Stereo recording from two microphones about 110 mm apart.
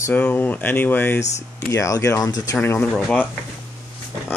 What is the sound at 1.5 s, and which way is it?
Speech, 25° left (ahead or behind).